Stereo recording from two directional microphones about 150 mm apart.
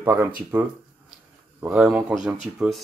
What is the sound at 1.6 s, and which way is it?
Speech, 10° right (ahead or behind).